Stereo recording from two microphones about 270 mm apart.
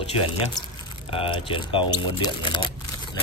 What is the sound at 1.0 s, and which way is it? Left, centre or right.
Speech, centre.